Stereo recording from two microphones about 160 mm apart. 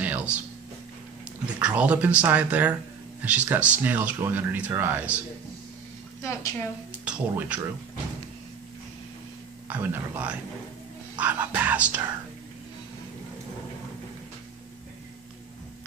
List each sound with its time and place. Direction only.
0.0 s a sound: 10° right (ahead or behind)
1.6 s speech: 10° right (ahead or behind)
6.2 s a woman's voice: 15° left (ahead or behind)
6.9 s speech: 10° right (ahead or behind)
9.7 s speech: 10° right (ahead or behind)